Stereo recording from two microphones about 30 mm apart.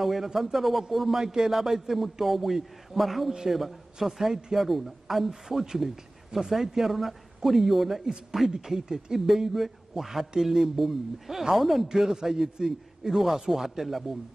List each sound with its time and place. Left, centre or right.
0.0 s a woman's voice: centre
1.2 s a man's voice: centre
8.0 s a man's voice: centre
10.8 s a woman's voice: centre
11.9 s a man's voice: centre